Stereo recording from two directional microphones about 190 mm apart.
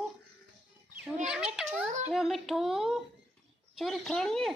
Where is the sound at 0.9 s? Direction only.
5° right (ahead or behind).